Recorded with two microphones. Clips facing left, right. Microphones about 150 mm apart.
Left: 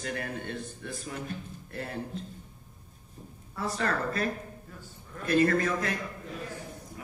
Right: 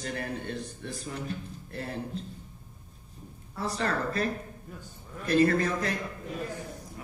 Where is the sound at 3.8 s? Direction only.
30° right (ahead or behind).